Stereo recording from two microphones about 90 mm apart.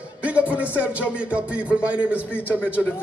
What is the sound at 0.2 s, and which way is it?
Music, 15° right (ahead or behind).